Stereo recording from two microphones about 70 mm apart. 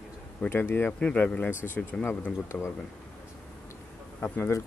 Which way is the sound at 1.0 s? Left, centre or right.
Centre.